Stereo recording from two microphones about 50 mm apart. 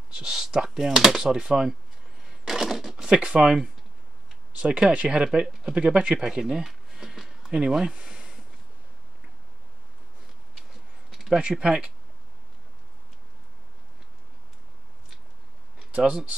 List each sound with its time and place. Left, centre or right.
0.1 s speech: centre
2.4 s a sound: centre
3.2 s speech: right
6.6 s a sound: centre
7.7 s speech: centre
11.1 s speech: centre
16.0 s speech: centre